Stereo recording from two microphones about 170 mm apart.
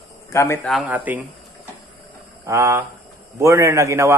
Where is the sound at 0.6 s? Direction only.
5° right (ahead or behind).